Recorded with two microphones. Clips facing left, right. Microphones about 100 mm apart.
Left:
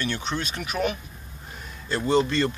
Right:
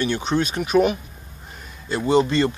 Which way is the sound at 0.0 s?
20° right (ahead or behind).